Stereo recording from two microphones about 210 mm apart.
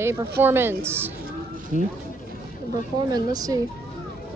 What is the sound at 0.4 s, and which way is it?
Speech, 10° right (ahead or behind).